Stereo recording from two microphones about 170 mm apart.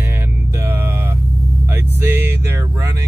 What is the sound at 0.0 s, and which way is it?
Music, 15° right (ahead or behind).